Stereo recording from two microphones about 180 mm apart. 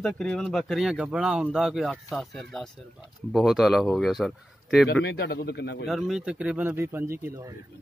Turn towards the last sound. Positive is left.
turn(degrees=-15)  # may be behind; listen again after turning